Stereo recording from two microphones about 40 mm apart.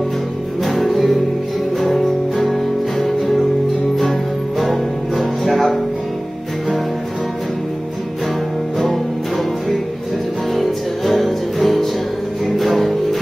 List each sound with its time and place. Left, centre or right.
0.7 s music: centre
8.7 s music: centre
10.5 s music: centre